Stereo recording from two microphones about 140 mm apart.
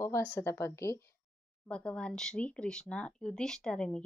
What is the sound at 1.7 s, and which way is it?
Speech, 5° left (ahead or behind).